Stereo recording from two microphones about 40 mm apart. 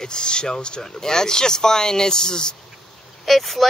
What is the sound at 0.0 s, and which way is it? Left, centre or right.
Speech, centre.